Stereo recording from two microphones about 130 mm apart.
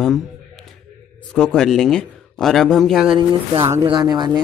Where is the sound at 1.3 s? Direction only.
5° left (ahead or behind).